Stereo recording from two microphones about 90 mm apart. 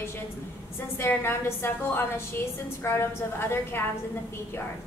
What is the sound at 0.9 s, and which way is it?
Speech, 25° left (ahead or behind).